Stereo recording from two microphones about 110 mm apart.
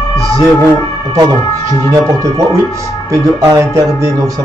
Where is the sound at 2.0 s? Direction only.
30° right (ahead or behind).